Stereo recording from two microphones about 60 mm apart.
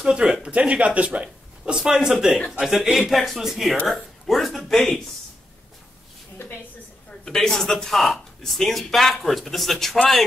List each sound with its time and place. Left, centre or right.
0.0 s speech: centre
7.2 s speech: centre